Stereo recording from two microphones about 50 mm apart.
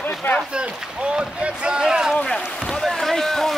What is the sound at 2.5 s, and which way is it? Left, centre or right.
Speech, left.